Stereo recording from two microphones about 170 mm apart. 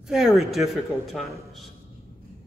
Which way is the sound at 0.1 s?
Centre (ahead or behind).